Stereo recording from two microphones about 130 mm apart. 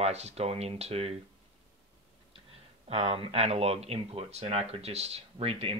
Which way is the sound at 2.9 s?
50° right (ahead or behind).